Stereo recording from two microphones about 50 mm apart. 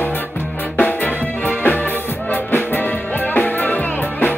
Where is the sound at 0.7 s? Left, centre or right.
Left.